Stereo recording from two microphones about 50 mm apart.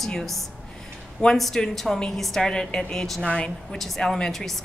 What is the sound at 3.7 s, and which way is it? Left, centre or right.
Speech, centre.